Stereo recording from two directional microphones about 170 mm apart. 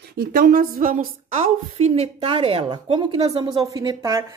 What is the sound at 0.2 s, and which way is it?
A woman's voice, 55° right (ahead or behind).